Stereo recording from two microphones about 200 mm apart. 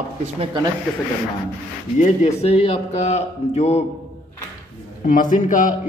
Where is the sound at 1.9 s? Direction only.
35° left (ahead or behind).